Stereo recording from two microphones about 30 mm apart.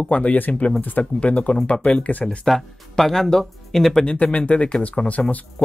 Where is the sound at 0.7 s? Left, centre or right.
Left.